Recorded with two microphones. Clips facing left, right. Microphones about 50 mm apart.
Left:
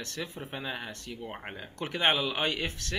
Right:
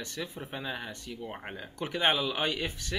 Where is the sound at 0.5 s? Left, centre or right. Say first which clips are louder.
Even; centre.